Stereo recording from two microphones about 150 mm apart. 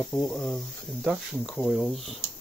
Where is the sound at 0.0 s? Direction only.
5° left (ahead or behind).